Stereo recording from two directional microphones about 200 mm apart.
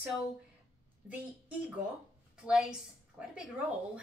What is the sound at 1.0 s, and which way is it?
A woman's voice, 5° right (ahead or behind).